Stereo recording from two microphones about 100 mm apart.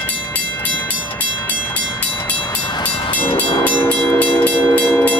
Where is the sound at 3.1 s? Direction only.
20° left (ahead or behind).